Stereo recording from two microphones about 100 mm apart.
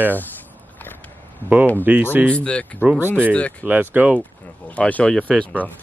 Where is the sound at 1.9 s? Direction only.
15° right (ahead or behind).